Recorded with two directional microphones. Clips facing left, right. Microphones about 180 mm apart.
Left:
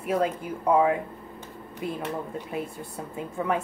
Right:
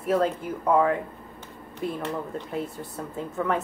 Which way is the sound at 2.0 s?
10° left (ahead or behind).